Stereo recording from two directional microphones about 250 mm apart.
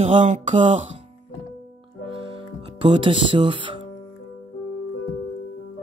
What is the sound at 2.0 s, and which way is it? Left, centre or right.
Music, right.